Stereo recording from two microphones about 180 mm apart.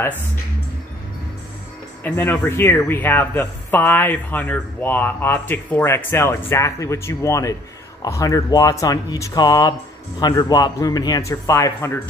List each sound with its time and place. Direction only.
2.0 s speech: 10° left (ahead or behind)